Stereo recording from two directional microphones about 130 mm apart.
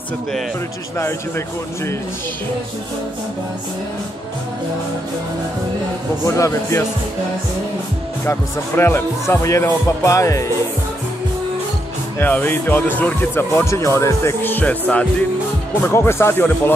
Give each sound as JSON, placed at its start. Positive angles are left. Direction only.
{"t": 6.2, "sound": "speech", "side_deg": 25}
{"t": 8.3, "sound": "speech", "side_deg": 20}
{"t": 12.2, "sound": "speech", "side_deg": 15}